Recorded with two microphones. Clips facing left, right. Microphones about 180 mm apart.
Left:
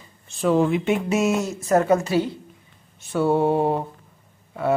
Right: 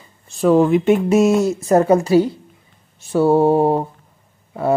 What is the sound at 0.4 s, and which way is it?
Speech, 45° right (ahead or behind).